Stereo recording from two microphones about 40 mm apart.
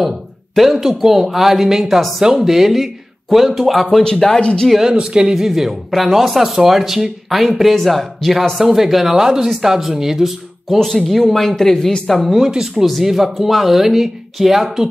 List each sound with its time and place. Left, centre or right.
0.6 s speech: centre
4.0 s speech: centre
4.4 s speech: left
4.9 s speech: right
5.3 s speech: centre
10.8 s speech: centre
12.4 s speech: centre